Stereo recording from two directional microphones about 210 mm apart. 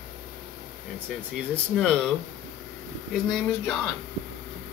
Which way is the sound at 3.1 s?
Centre (ahead or behind).